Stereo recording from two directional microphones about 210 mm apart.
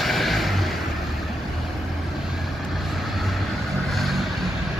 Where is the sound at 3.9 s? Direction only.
Centre (ahead or behind).